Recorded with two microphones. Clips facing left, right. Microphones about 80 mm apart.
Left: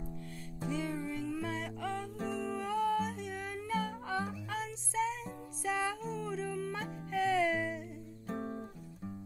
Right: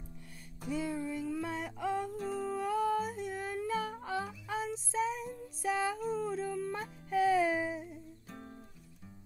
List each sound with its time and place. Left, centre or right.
0.7 s music: centre
2.3 s humming: centre
4.5 s music: centre
8.3 s music: left